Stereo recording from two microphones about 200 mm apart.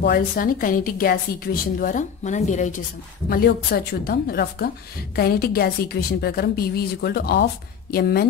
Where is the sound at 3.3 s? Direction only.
50° left (ahead or behind).